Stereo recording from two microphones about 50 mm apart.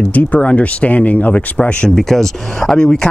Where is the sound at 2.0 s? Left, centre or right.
Centre.